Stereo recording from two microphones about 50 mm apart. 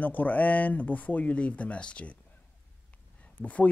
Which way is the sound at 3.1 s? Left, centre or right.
Left.